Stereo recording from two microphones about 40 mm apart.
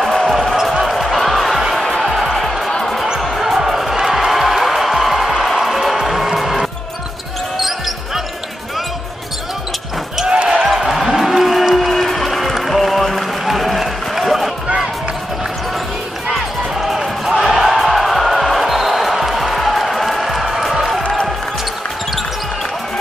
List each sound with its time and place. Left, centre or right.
0.3 s music: centre
2.7 s music: centre
3.3 s basketball bounce: centre
3.9 s music: centre
7.6 s basketball bounce: centre
10.2 s basketball bounce: right
10.5 s a sound: centre
16.3 s basketball bounce: centre
17.3 s music: centre